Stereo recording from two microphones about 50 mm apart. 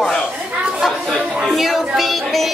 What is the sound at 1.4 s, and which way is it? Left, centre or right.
Speech, centre.